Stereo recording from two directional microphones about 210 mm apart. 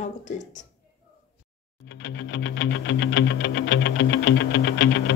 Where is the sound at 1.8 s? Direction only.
55° left (ahead or behind).